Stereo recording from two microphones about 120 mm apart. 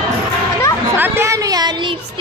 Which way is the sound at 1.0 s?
25° right (ahead or behind).